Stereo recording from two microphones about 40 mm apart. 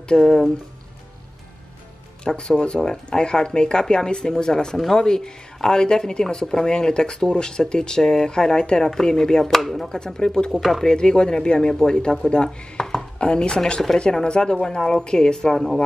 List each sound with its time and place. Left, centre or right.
0.1 s speech: centre
2.2 s speech: centre
9.8 s speech: centre
10.5 s speech: centre
10.8 s speech: centre
13.2 s speech: left
15.5 s speech: centre